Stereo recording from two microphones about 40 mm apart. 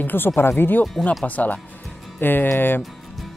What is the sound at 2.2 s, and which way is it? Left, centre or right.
Speech, left.